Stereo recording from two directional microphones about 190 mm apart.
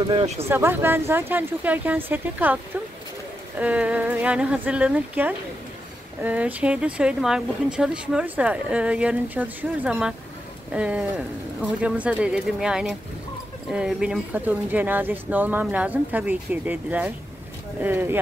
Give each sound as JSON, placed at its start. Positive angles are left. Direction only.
{"t": 0.0, "sound": "speech", "side_deg": -25}
{"t": 0.5, "sound": "speech", "side_deg": -10}